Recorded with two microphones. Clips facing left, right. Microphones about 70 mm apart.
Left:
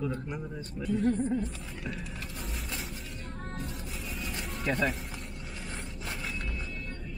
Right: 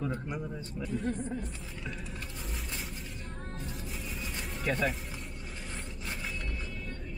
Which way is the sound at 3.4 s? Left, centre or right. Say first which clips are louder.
Left 4 dB; left.